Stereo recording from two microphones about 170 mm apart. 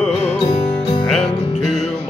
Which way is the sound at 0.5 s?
25° left (ahead or behind).